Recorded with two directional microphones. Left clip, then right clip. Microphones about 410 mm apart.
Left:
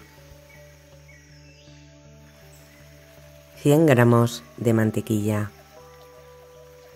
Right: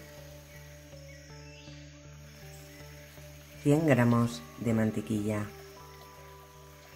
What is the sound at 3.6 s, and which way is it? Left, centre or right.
Speech, left.